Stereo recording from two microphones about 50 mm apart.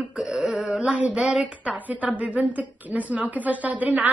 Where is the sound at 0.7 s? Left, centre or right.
Right.